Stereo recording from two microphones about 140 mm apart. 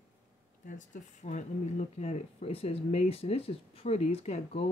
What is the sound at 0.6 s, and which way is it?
Speech, 65° left (ahead or behind).